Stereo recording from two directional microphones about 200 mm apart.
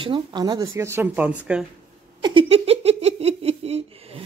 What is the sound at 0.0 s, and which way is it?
Speech, 25° right (ahead or behind).